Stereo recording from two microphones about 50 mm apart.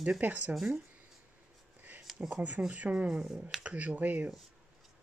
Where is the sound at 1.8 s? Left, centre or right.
Right.